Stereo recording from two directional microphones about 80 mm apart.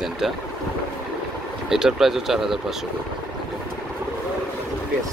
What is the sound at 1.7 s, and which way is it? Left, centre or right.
Speech, centre.